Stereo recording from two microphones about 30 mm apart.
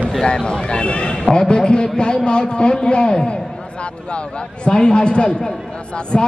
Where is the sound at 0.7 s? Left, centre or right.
Left.